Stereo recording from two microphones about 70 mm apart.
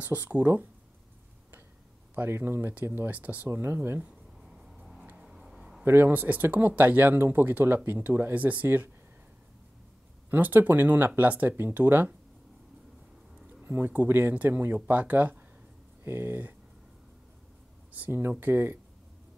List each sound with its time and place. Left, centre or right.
0.0 s speech: right
2.1 s speech: right
3.5 s speech: right
5.2 s a sound: centre
5.9 s speech: right
10.3 s speech: right
13.6 s speech: right
17.9 s speech: right